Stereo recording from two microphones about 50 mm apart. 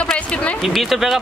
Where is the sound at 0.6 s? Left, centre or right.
Centre.